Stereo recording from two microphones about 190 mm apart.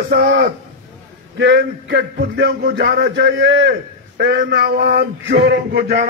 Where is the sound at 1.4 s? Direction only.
70° right (ahead or behind).